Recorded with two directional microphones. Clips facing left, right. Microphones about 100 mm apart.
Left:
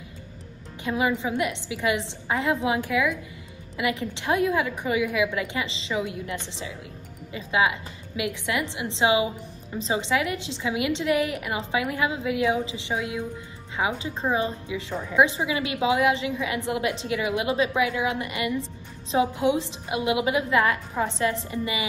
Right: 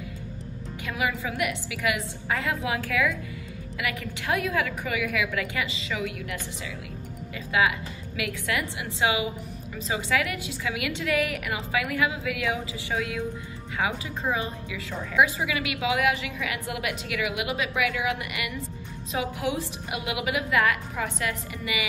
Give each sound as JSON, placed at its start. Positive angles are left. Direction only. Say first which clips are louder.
{"t": 0.8, "sound": "a woman's voice", "louder": "left 4 dB", "side_deg": 25}